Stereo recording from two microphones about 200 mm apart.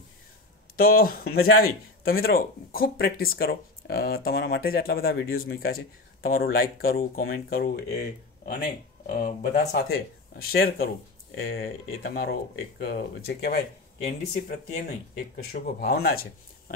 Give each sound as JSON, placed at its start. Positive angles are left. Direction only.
{"t": 0.7, "sound": "speech", "side_deg": 50}
{"t": 9.0, "sound": "speech", "side_deg": 40}
{"t": 9.7, "sound": "speech", "side_deg": 50}